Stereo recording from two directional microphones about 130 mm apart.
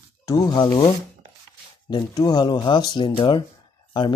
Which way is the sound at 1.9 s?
30° left (ahead or behind).